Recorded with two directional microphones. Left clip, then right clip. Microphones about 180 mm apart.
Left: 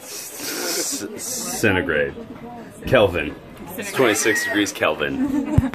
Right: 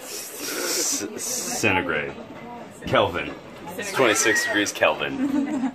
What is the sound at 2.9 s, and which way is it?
A man's voice, 20° left (ahead or behind).